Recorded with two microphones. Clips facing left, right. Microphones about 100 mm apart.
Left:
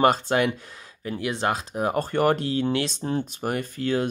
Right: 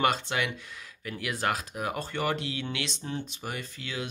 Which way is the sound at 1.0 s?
30° left (ahead or behind).